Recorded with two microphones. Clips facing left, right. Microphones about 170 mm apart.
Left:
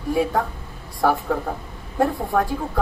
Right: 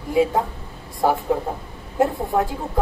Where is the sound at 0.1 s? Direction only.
20° right (ahead or behind).